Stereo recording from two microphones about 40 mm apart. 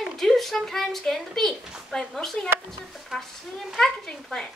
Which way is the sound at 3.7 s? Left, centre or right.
Centre.